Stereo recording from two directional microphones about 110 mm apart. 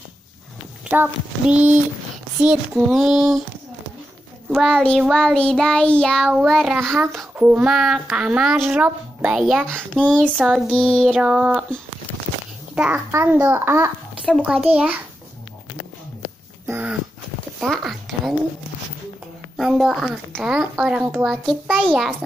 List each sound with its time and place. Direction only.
0.8 s speech: 15° right (ahead or behind)
4.5 s child singing: 5° left (ahead or behind)
6.2 s speech: 5° right (ahead or behind)
9.9 s child singing: 10° left (ahead or behind)
10.4 s speech: 5° right (ahead or behind)
10.7 s child singing: 5° left (ahead or behind)
11.1 s speech: 10° right (ahead or behind)
12.7 s a child's voice: 10° right (ahead or behind)
13.1 s a child's voice: 20° right (ahead or behind)
14.2 s speech: 5° left (ahead or behind)
14.7 s speech: 10° right (ahead or behind)
16.6 s a sound: 20° right (ahead or behind)
17.6 s a sound: centre (ahead or behind)
19.5 s a woman's voice: centre (ahead or behind)